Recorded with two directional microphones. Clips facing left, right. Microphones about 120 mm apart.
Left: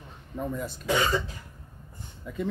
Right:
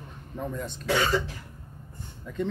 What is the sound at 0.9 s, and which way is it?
Speech, 20° left (ahead or behind).